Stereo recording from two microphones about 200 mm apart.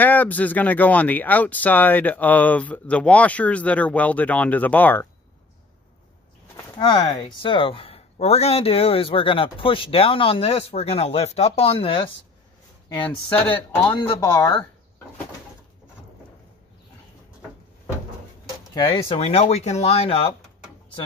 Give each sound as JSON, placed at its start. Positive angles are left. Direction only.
{"t": 0.0, "sound": "speech", "side_deg": 10}
{"t": 6.5, "sound": "speech", "side_deg": 20}
{"t": 12.9, "sound": "speech", "side_deg": 5}
{"t": 13.9, "sound": "speech", "side_deg": 15}
{"t": 18.8, "sound": "speech", "side_deg": 25}